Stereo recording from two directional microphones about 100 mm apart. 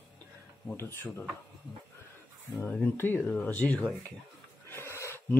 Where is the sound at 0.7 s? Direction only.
25° left (ahead or behind).